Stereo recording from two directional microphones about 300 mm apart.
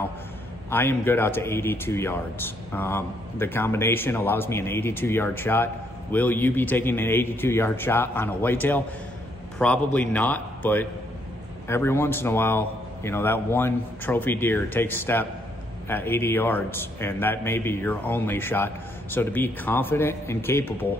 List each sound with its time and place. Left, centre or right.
0.7 s a man's voice: centre